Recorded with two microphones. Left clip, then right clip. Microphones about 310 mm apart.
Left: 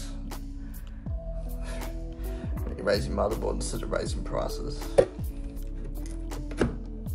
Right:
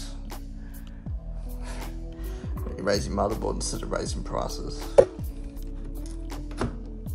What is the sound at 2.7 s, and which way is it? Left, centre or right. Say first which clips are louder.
Speech: right 1 dB; right.